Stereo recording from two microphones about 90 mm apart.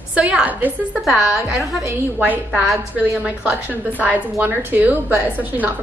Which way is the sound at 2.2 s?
20° right (ahead or behind).